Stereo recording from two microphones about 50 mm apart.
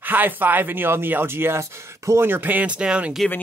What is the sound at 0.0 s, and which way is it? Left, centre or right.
Speech, right.